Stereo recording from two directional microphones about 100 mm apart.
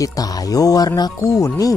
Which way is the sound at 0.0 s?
35° left (ahead or behind).